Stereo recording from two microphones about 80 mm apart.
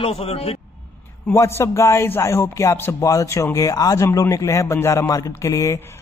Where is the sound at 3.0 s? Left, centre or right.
Left.